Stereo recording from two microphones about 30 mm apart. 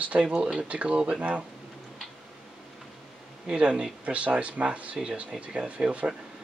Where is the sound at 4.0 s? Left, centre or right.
Right.